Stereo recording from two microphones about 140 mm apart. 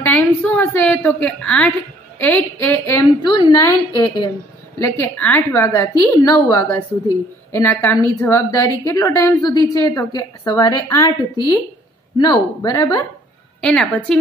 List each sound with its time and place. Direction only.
0.0 s a woman's voice: 10° left (ahead or behind)
3.2 s a woman's voice: 25° left (ahead or behind)
4.7 s a woman's voice: 15° left (ahead or behind)
13.6 s a woman's voice: 5° left (ahead or behind)